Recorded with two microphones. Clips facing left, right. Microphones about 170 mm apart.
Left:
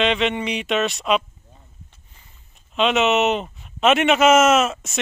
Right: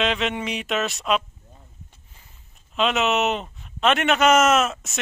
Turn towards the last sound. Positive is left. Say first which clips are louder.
# left 3 dB
turn(degrees=0)  # may be behind; listen again after turning